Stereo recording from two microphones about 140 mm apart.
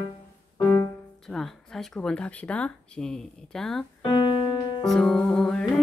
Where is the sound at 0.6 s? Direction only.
20° left (ahead or behind).